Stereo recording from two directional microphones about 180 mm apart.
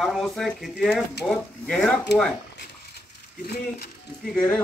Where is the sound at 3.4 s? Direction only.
60° left (ahead or behind).